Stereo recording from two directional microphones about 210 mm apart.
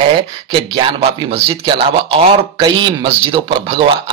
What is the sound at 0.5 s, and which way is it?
Speech, 25° right (ahead or behind).